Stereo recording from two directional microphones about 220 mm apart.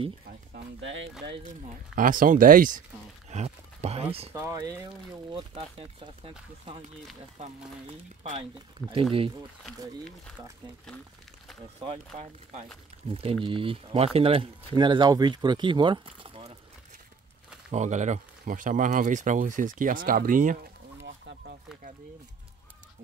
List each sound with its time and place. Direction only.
0.5 s speech: 55° right (ahead or behind)
1.4 s speech: 35° right (ahead or behind)
4.3 s speech: 15° right (ahead or behind)
8.8 s speech: 5° left (ahead or behind)
11.8 s speech: 30° right (ahead or behind)
17.6 s speech: 30° right (ahead or behind)
21.0 s a sound: 55° right (ahead or behind)